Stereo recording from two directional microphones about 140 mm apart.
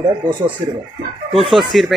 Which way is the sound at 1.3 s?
Centre (ahead or behind).